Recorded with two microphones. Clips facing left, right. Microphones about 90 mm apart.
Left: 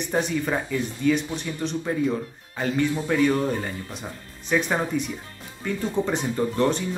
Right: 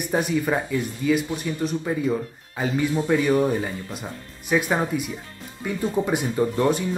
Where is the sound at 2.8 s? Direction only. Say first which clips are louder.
Even; 15° right (ahead or behind).